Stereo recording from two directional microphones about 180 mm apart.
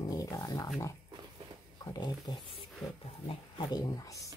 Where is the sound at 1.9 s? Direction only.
25° left (ahead or behind).